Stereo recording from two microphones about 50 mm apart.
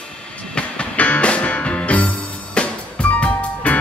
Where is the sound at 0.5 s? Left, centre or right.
Left.